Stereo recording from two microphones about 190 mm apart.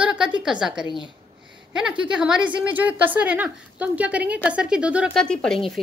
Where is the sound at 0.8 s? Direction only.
25° left (ahead or behind).